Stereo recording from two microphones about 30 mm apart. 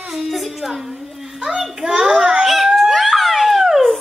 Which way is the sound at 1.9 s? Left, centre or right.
Right.